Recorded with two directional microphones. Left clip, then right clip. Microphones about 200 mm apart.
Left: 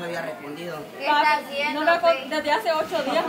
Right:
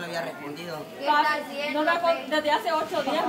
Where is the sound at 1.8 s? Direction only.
15° left (ahead or behind).